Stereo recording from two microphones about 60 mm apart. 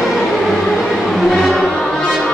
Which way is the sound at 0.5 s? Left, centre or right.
Centre.